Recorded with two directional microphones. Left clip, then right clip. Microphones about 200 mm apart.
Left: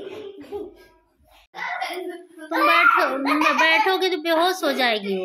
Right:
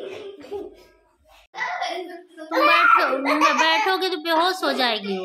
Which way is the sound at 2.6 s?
5° left (ahead or behind).